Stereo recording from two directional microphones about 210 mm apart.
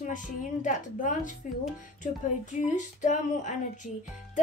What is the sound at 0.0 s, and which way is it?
A woman's voice, 35° left (ahead or behind).